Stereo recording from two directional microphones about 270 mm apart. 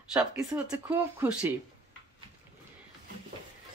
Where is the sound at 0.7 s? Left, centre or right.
Centre.